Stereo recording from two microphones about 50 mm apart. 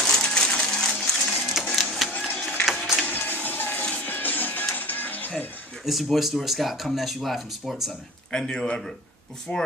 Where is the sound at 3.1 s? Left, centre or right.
Left.